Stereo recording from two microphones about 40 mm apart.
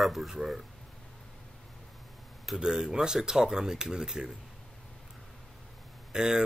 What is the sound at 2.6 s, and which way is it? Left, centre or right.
Speech, centre.